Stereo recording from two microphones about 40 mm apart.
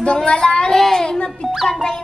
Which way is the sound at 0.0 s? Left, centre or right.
Left.